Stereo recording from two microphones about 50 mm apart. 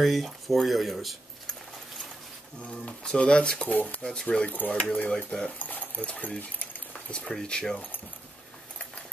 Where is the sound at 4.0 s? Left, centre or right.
Centre.